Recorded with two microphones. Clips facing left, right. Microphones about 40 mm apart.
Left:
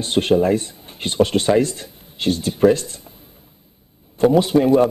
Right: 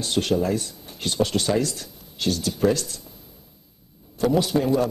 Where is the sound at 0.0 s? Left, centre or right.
Left.